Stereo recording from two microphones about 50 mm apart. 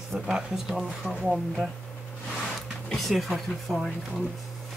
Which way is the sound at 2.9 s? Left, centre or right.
Centre.